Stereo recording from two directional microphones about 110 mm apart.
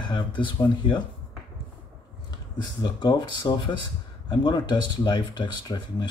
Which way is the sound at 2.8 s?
45° left (ahead or behind).